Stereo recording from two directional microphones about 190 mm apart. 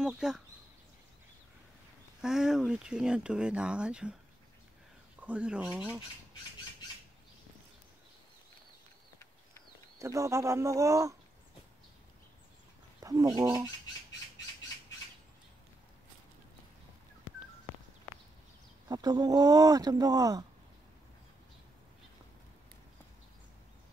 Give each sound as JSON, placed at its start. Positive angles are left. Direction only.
{"t": 0.0, "sound": "speech", "side_deg": -5}
{"t": 2.2, "sound": "speech", "side_deg": -5}
{"t": 5.2, "sound": "speech", "side_deg": -5}
{"t": 9.9, "sound": "speech", "side_deg": -15}
{"t": 13.0, "sound": "speech", "side_deg": -20}
{"t": 18.9, "sound": "speech", "side_deg": -20}